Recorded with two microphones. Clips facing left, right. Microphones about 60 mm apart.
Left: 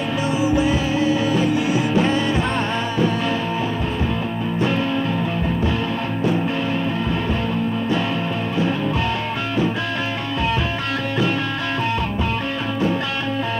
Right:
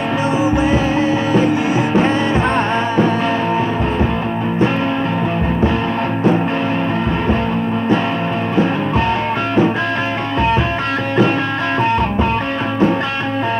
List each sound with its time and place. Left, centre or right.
0.5 s music: right